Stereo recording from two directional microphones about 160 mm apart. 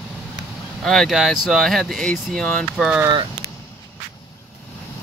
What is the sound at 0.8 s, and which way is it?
Speech, centre (ahead or behind).